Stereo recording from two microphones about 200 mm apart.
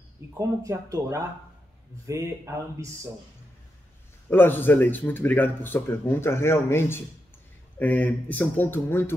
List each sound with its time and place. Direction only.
0.3 s speech: 15° right (ahead or behind)
4.3 s speech: 10° left (ahead or behind)